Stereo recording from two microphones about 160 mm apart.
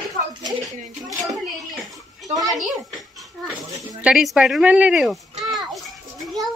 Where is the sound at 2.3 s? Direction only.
Centre (ahead or behind).